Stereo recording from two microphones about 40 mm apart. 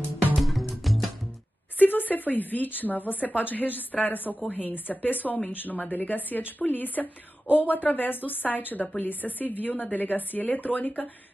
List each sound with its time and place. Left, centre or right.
0.4 s music: centre
1.8 s a woman's voice: left